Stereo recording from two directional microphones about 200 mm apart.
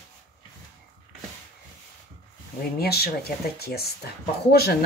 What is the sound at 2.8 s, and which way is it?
A woman's voice, 50° left (ahead or behind).